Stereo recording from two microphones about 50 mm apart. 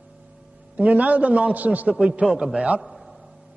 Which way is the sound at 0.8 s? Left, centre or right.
Right.